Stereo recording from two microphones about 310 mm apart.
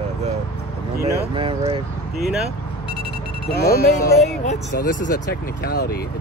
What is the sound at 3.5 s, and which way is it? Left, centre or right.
Speech, left.